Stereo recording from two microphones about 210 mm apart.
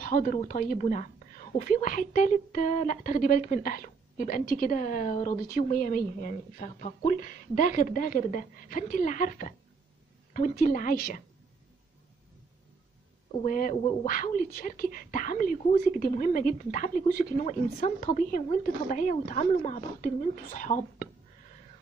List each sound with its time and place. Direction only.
0.0 s a woman's voice: 40° left (ahead or behind)
13.4 s a woman's voice: 40° left (ahead or behind)